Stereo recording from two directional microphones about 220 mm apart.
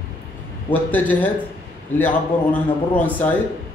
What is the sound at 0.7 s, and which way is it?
A man's voice, 5° left (ahead or behind).